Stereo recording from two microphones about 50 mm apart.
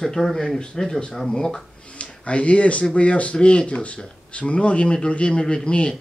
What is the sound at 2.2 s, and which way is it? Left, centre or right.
Speech, left.